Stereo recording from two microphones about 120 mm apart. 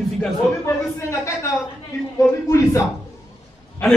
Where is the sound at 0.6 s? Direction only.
25° left (ahead or behind).